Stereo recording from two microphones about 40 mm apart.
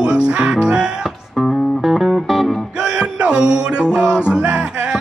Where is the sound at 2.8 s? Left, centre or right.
Right.